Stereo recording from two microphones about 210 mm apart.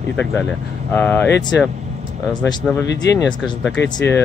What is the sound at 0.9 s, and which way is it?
Speech, 10° left (ahead or behind).